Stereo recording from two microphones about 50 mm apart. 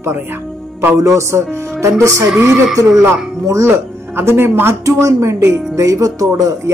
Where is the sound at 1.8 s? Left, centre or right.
Right.